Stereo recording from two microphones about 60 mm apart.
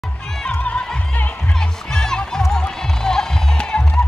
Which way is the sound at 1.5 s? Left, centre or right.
Centre.